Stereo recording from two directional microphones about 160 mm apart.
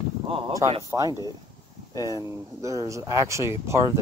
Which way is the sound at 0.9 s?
20° right (ahead or behind).